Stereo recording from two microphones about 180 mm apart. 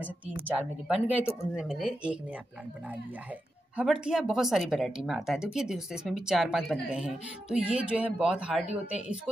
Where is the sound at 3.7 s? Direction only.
5° right (ahead or behind).